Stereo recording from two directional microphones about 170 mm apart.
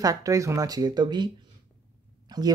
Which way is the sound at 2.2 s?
25° right (ahead or behind).